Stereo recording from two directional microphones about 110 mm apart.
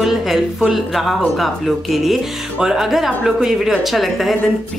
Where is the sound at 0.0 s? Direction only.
Centre (ahead or behind).